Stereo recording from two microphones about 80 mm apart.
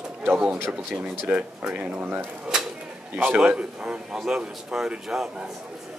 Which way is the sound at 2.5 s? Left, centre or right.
Centre.